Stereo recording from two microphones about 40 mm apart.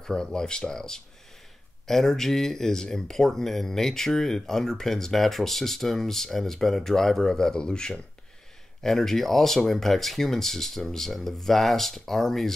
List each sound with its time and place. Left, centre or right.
0.0 s speech: centre
8.8 s speech: centre